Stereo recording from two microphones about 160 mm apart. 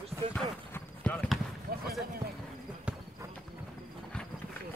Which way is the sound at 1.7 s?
65° right (ahead or behind).